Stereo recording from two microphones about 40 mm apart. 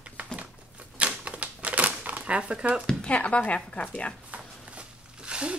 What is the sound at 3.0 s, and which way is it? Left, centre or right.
A woman's voice, left.